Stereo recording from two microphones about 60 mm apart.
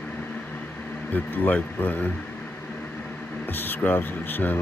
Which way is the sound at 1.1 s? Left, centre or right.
Left.